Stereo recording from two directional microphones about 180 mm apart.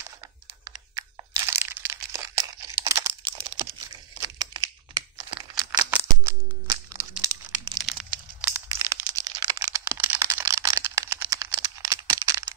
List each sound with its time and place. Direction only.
0.7 s a sound: 15° right (ahead or behind)
4.2 s crumpling: 20° right (ahead or behind)
8.4 s crack: 10° right (ahead or behind)